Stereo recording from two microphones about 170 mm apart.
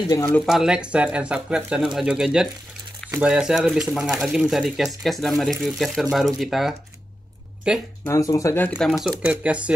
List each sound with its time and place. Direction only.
0.1 s speech: 20° left (ahead or behind)
0.5 s speech: 5° right (ahead or behind)
8.0 s speech: 20° left (ahead or behind); by 9.8 s 5° right (ahead or behind)